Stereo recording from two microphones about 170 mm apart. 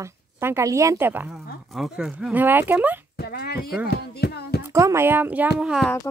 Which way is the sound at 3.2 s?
65° left (ahead or behind).